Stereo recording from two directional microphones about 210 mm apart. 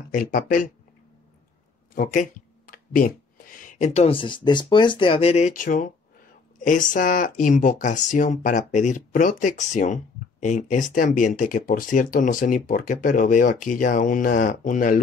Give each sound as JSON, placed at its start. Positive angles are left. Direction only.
{"t": 0.1, "sound": "speech", "side_deg": 40}
{"t": 2.0, "sound": "speech", "side_deg": 40}